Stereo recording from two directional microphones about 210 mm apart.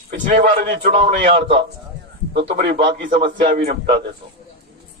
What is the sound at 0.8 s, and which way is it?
Speech, 30° right (ahead or behind).